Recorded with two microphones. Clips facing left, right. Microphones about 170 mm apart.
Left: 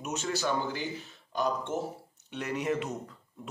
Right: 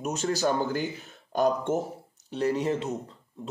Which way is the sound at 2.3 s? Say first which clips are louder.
Right 5 dB; 35° right (ahead or behind).